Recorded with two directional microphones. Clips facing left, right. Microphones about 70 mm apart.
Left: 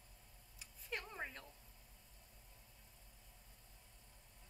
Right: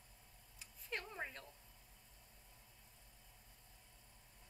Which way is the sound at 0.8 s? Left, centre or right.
Centre.